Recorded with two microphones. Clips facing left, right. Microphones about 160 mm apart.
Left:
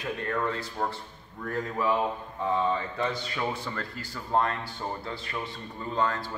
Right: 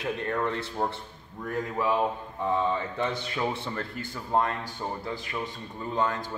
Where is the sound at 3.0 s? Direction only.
20° right (ahead or behind).